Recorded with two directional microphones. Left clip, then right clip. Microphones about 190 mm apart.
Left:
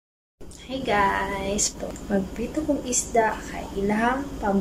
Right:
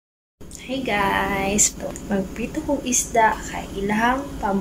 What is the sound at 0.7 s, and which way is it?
A woman's voice, centre (ahead or behind).